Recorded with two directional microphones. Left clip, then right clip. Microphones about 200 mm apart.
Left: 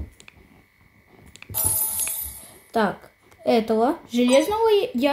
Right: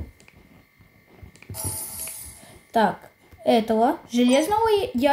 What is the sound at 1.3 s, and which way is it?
Coin, 90° left.